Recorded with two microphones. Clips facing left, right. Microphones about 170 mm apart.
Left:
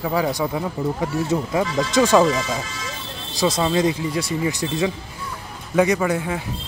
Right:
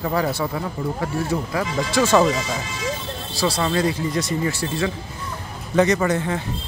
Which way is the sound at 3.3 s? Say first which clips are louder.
Left 2 dB; 20° left (ahead or behind).